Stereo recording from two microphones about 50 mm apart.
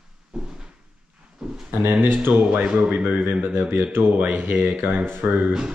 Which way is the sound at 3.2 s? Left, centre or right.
Right.